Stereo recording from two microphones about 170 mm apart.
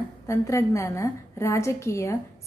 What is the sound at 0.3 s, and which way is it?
A woman's voice, 15° left (ahead or behind).